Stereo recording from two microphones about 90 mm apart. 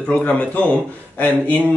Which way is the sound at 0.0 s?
15° left (ahead or behind).